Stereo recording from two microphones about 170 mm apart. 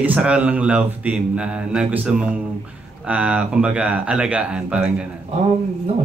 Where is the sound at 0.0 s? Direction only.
5° right (ahead or behind).